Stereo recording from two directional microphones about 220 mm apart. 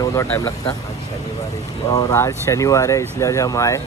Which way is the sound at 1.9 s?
15° left (ahead or behind).